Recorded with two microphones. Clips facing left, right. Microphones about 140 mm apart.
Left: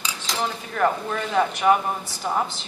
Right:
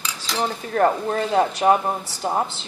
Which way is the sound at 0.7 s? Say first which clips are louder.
Right 4 dB; 35° right (ahead or behind).